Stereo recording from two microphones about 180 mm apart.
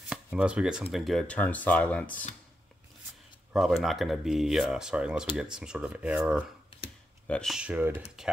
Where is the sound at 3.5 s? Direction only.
Centre (ahead or behind).